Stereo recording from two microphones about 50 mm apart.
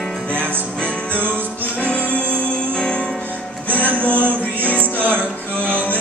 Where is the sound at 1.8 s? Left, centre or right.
Left.